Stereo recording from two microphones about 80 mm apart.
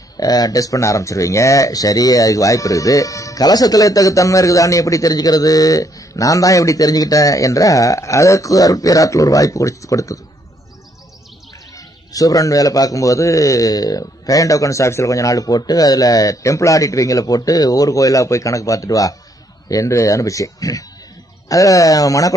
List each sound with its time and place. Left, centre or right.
0.2 s speech: left
11.7 s speech: left